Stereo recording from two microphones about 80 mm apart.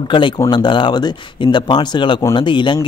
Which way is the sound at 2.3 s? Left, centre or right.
Left.